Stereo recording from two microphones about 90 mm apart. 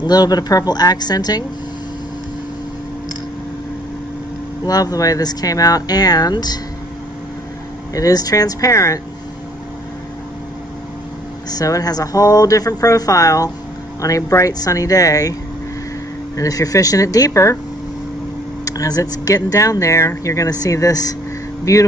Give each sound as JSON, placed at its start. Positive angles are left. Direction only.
{"t": 0.0, "sound": "speech", "side_deg": 45}
{"t": 4.6, "sound": "speech", "side_deg": 45}
{"t": 7.9, "sound": "speech", "side_deg": 40}
{"t": 11.5, "sound": "speech", "side_deg": 40}
{"t": 16.3, "sound": "speech", "side_deg": 40}
{"t": 18.7, "sound": "speech", "side_deg": 40}